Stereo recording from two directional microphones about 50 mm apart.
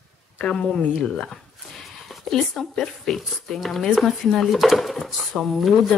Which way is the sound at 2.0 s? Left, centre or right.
Centre.